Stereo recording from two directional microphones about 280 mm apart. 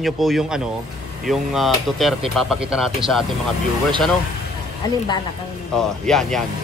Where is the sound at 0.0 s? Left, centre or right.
Centre.